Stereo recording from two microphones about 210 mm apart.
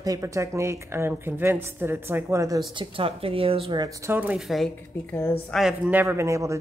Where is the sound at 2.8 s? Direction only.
25° right (ahead or behind).